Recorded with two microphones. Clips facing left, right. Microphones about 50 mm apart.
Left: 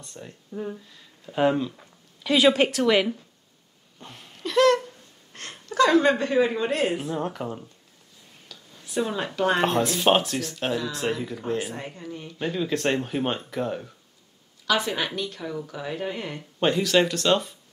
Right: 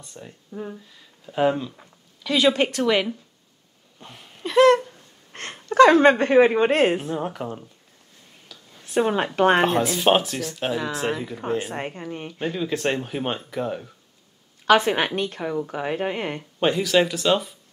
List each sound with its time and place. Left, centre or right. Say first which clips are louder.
0.0 s speech: even; centre
4.0 s a sound: even; centre
4.4 s a sound: right 4 dB; right
5.3 s a sound: right 5 dB; right
5.8 s a woman's voice: right 5 dB; right
7.0 s speech: right 1 dB; centre
8.5 s a sound: even; centre
8.8 s speech: right 6 dB; right
9.7 s speech: right 2 dB; centre
11.7 s a woman's voice: right 5 dB; right
12.4 s speech: even; centre
14.7 s a woman's voice: right 7 dB; right
16.5 s speech: right 1 dB; centre